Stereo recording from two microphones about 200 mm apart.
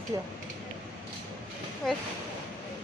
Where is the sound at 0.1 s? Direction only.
15° right (ahead or behind).